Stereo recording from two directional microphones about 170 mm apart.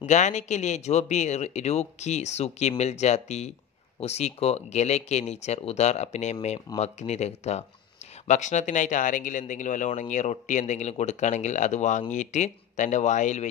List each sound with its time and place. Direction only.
0.0 s speech: 45° left (ahead or behind)